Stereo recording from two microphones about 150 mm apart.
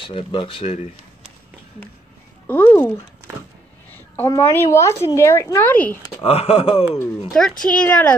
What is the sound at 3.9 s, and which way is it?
A woman's voice, 15° left (ahead or behind).